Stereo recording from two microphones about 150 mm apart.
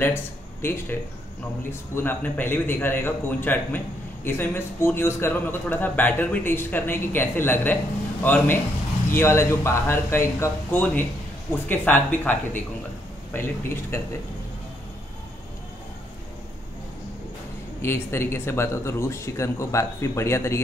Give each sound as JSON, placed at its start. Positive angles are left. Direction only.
{"t": 0.0, "sound": "a man's voice", "side_deg": 15}
{"t": 17.8, "sound": "a man's voice", "side_deg": 15}